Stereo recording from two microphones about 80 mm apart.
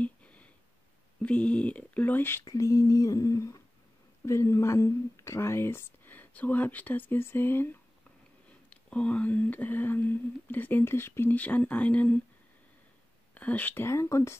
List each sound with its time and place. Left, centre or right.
0.0 s a sound: centre
1.2 s speech: centre
2.4 s a sound: left
4.3 s speech: left
6.1 s speech: centre
8.6 s speech: centre; by 11.3 s left
11.3 s speech: centre
13.3 s speech: centre
13.8 s speech: left